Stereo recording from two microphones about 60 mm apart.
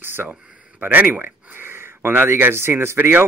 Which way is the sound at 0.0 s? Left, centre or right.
Right.